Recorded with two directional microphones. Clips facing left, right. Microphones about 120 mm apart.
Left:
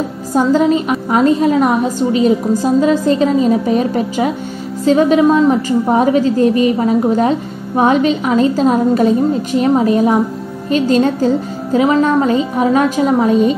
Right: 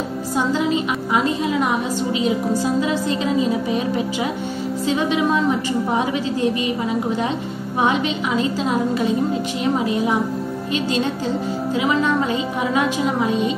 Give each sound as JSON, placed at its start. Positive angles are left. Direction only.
{"t": 0.3, "sound": "a woman's voice", "side_deg": 45}